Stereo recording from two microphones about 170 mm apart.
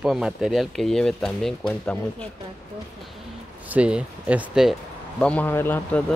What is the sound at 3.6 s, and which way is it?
Speech, 10° right (ahead or behind).